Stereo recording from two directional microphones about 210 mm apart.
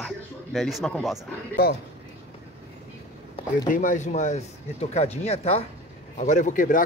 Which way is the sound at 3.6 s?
40° left (ahead or behind).